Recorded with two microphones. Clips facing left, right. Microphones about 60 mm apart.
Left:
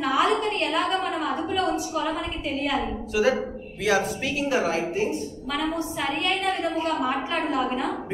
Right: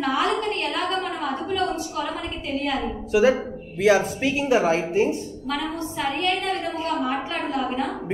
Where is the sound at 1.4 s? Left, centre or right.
Centre.